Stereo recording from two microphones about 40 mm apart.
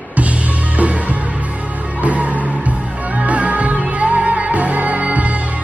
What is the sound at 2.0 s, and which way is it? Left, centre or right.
Music, right.